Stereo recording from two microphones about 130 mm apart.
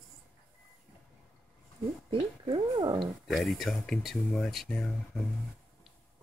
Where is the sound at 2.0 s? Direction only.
40° right (ahead or behind).